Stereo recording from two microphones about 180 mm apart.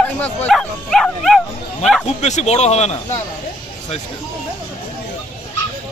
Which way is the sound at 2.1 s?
40° left (ahead or behind).